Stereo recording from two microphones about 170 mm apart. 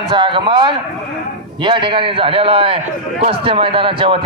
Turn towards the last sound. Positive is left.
turn(degrees=-30)  # may be behind; listen again after turning